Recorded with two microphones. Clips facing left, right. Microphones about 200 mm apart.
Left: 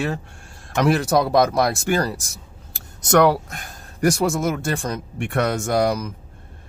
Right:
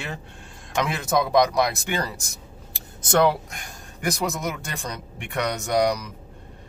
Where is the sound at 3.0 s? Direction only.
60° left (ahead or behind).